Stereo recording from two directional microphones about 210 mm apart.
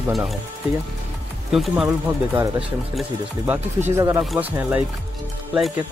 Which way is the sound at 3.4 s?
10° right (ahead or behind).